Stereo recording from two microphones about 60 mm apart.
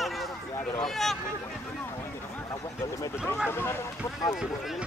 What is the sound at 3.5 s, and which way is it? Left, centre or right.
Speech, left.